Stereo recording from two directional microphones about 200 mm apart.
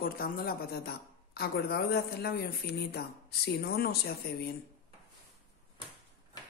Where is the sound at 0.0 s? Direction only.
50° left (ahead or behind).